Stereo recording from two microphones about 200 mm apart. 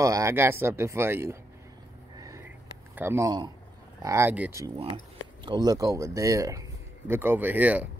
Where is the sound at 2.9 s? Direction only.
10° right (ahead or behind).